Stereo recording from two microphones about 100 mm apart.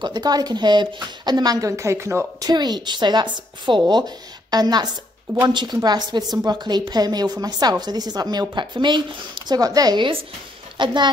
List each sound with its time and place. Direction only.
0.0 s a woman's voice: 45° right (ahead or behind); by 2.2 s 25° right (ahead or behind)
2.4 s a woman's voice: 45° right (ahead or behind)